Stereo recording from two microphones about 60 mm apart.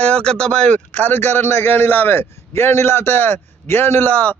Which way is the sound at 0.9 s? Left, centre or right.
Left.